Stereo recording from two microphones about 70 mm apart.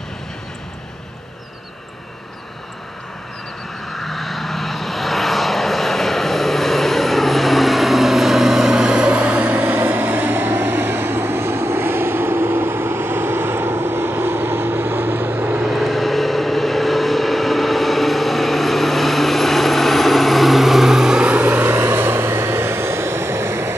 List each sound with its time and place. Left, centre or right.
3.9 s vehicle: centre; by 15.6 s right
15.7 s vehicle: centre
21.3 s vehicle: right